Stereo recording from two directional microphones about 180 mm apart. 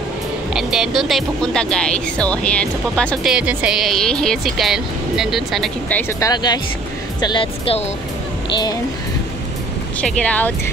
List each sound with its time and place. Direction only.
0.5 s speech: 5° right (ahead or behind)
3.3 s speech: 5° right (ahead or behind); by 7.8 s 30° left (ahead or behind)
9.9 s speech: 5° left (ahead or behind)